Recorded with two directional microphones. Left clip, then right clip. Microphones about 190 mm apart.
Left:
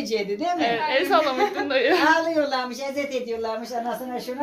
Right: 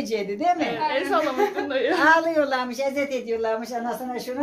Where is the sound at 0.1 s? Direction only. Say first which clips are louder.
Right 2 dB; 45° right (ahead or behind).